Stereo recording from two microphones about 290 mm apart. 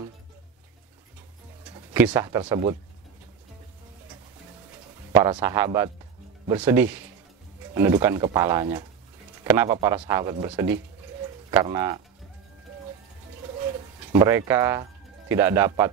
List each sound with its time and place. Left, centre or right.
1.7 s speech: centre
5.1 s speech: centre
14.1 s speech: centre